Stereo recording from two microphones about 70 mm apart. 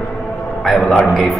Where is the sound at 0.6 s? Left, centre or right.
Centre.